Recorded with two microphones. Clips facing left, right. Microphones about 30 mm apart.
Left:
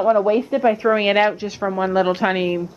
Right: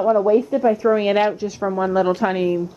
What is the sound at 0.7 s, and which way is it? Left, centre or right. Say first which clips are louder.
A woman's voice: even; left.